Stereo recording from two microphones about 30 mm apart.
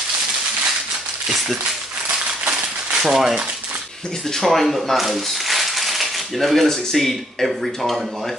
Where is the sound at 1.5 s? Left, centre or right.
Right.